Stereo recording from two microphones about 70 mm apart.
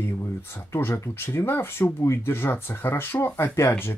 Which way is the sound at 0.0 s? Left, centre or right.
Left.